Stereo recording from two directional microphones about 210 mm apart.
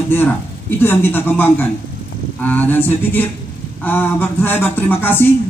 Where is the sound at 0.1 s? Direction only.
10° left (ahead or behind).